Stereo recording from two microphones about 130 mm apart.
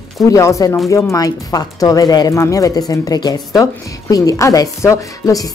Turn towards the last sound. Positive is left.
turn(degrees=25)  # may be behind; listen again after turning